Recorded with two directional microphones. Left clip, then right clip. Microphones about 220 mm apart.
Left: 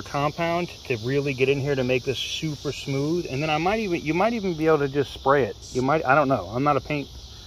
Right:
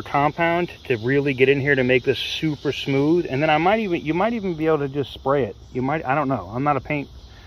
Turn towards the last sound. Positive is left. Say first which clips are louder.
# right 1 dB
turn(degrees=10)  # may be behind; listen again after turning